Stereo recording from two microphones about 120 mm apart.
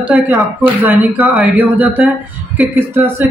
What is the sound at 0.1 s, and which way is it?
Speech, centre (ahead or behind).